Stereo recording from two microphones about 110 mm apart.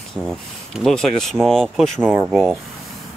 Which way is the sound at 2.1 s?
20° right (ahead or behind).